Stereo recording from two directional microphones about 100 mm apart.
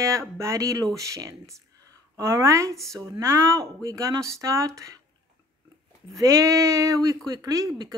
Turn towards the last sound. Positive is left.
turn(degrees=-40)  # may be behind; listen again after turning